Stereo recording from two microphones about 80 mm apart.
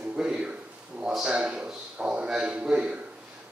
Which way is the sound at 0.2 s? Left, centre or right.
Centre.